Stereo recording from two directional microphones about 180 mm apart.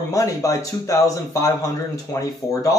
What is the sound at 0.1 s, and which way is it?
Speech, 20° left (ahead or behind).